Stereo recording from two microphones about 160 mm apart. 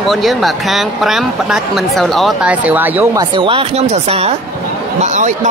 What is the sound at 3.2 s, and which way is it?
Speech, 30° right (ahead or behind).